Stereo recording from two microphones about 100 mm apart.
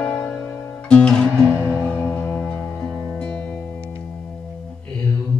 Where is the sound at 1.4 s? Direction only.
20° right (ahead or behind).